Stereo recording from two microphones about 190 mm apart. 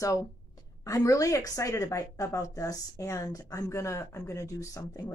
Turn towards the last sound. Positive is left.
turn(degrees=15)  # may be behind; listen again after turning